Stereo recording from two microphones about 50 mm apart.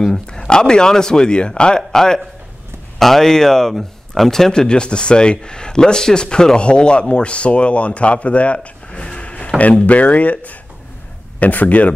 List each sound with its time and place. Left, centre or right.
0.5 s speech: centre